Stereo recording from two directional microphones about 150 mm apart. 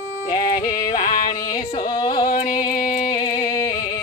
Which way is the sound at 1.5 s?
25° left (ahead or behind).